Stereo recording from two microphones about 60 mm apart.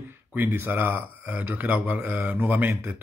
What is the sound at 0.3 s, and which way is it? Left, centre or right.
Speech, right.